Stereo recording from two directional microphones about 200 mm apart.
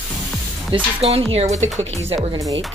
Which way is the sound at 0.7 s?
30° right (ahead or behind).